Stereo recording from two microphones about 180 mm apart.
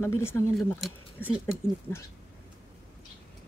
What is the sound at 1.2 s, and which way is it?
Speech, 10° left (ahead or behind).